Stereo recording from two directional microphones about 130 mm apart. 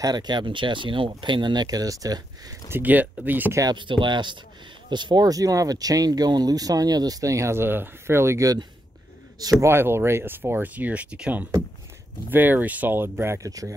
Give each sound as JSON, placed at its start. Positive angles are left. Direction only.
{"t": 0.0, "sound": "speech", "side_deg": -30}
{"t": 2.7, "sound": "speech", "side_deg": -10}
{"t": 3.6, "sound": "speech", "side_deg": -40}